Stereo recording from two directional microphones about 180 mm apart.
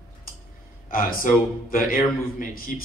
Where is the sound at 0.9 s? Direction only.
50° left (ahead or behind).